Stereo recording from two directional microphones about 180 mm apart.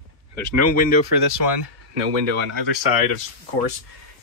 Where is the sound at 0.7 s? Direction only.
50° left (ahead or behind).